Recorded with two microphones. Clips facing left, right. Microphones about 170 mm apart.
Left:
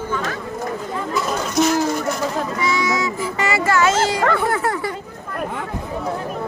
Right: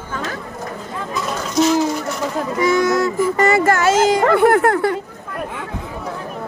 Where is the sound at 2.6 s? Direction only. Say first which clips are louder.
Right 8 dB; 50° right (ahead or behind).